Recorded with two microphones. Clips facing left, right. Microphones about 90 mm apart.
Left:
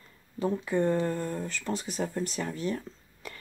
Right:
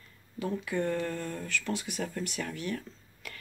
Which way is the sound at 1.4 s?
35° left (ahead or behind).